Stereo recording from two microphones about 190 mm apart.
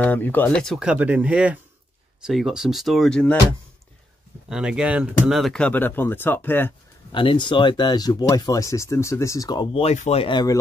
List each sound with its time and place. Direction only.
0.0 s speech: 10° left (ahead or behind)
4.5 s speech: 5° right (ahead or behind); by 6.7 s 10° left (ahead or behind)
7.1 s speech: 25° left (ahead or behind)